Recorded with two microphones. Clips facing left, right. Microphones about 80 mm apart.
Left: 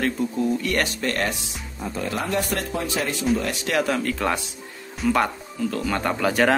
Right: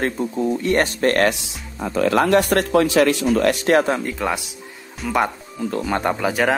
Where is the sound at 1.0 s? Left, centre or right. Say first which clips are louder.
Right 8 dB; right.